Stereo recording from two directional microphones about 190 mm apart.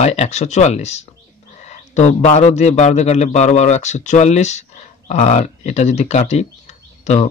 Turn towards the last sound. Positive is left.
turn(degrees=35)  # may be behind; listen again after turning